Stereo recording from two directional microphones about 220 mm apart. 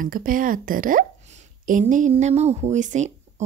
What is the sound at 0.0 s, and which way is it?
Speech, 40° right (ahead or behind).